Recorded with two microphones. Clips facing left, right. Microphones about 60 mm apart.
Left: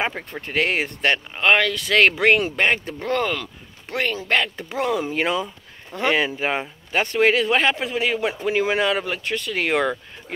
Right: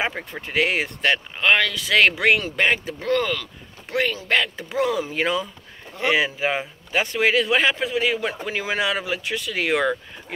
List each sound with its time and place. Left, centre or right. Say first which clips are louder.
0.0 s speech: even; centre